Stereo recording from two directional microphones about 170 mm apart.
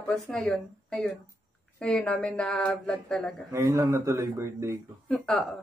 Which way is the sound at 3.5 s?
20° right (ahead or behind).